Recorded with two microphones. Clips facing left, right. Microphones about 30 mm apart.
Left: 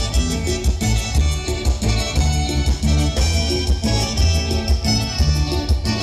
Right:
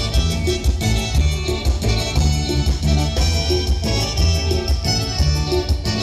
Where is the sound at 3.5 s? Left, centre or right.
Centre.